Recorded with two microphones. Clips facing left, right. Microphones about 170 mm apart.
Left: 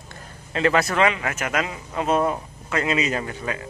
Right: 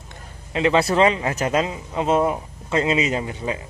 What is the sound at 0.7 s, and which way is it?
Speech, 30° right (ahead or behind).